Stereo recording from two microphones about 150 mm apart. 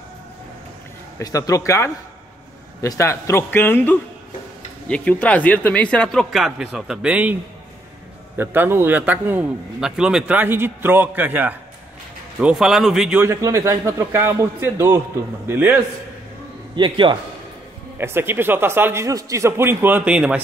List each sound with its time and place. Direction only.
1.2 s speech: 25° left (ahead or behind); by 7.3 s 10° right (ahead or behind)
8.4 s a man's voice: 15° right (ahead or behind)
13.2 s a man's voice: 20° right (ahead or behind)
16.7 s a man's voice: 30° right (ahead or behind)
17.9 s a man's voice: 15° right (ahead or behind)